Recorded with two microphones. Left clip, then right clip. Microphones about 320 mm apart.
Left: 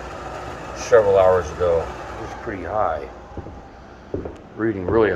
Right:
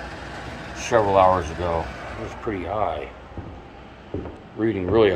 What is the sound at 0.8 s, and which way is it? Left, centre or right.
Speech, centre.